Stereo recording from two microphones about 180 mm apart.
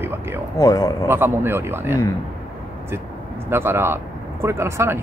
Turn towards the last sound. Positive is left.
turn(degrees=-15)  # may be behind; listen again after turning